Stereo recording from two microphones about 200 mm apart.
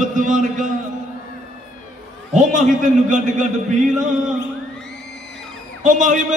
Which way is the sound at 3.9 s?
Centre (ahead or behind).